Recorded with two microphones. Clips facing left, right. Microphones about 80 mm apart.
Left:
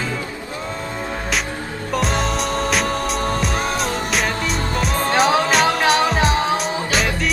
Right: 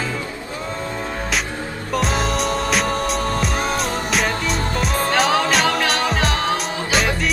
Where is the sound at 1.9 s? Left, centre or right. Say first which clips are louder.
Even; centre.